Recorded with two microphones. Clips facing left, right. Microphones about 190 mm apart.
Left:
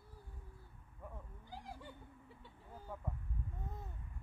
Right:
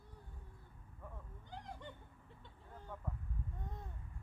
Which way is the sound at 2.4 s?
10° left (ahead or behind).